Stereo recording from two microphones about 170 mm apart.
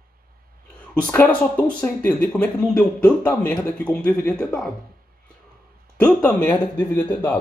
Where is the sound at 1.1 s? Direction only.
10° left (ahead or behind).